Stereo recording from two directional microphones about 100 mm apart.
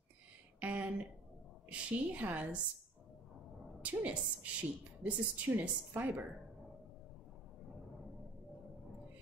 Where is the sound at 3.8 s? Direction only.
15° right (ahead or behind).